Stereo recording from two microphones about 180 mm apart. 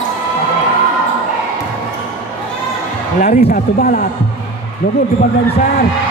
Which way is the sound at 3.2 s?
45° left (ahead or behind).